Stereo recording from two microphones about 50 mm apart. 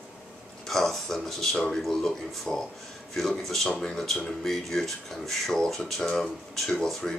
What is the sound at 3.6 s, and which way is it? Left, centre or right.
Speech, centre.